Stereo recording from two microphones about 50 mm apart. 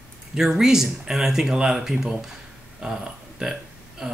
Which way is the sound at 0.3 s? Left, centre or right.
Centre.